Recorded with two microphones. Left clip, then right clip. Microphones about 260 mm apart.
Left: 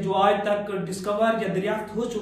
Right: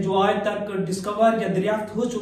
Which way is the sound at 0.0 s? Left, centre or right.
Centre.